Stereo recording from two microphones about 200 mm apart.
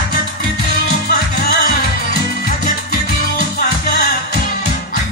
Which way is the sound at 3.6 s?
55° left (ahead or behind).